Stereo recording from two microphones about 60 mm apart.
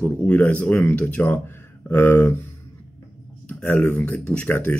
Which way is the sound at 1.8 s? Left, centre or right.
Left.